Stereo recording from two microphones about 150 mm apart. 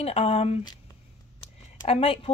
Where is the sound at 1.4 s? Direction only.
40° left (ahead or behind).